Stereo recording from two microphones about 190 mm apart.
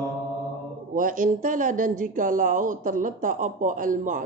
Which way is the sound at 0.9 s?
45° right (ahead or behind).